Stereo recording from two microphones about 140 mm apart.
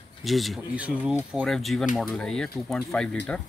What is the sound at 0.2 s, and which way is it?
Speech, centre (ahead or behind).